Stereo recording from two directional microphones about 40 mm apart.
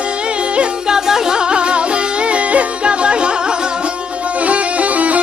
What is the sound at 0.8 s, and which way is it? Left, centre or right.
Music, centre.